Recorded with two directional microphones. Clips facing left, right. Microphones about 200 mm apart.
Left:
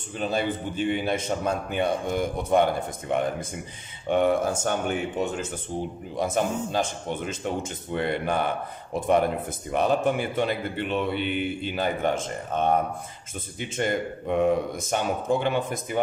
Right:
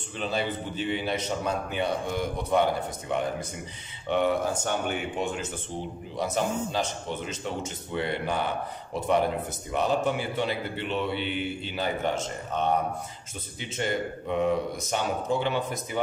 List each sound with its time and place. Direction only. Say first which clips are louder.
0.2 s a man's voice: left 3 dB; 50° left (ahead or behind)